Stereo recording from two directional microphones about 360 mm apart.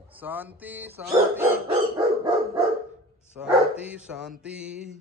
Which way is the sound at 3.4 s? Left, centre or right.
Centre.